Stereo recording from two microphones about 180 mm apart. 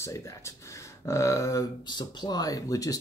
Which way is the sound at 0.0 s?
15° left (ahead or behind).